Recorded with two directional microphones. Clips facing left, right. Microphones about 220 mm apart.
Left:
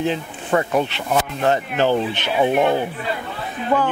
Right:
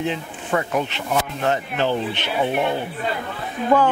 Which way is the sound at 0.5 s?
35° left (ahead or behind).